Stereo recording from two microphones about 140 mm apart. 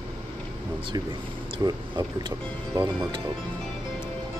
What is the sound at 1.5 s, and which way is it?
Speech, 35° right (ahead or behind).